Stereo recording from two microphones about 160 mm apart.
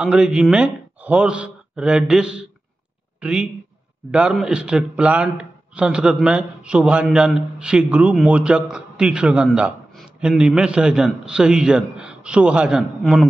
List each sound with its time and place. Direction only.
0.0 s a man's voice: 5° right (ahead or behind)